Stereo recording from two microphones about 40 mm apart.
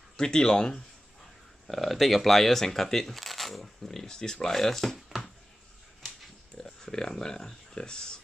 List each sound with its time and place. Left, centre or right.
0.2 s speech: centre
1.7 s speech: centre
6.6 s speech: centre